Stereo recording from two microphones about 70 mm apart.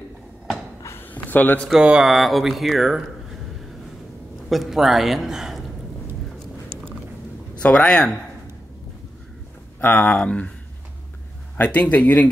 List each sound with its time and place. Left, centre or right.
0.8 s a sound: left
1.7 s mantra: centre
2.0 s a man's voice: centre
4.5 s a man's voice: centre
7.6 s speech: centre
9.8 s speech: left
11.6 s speech: left